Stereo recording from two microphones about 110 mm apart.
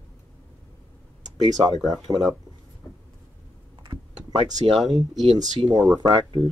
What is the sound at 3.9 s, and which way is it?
Typing, 40° right (ahead or behind).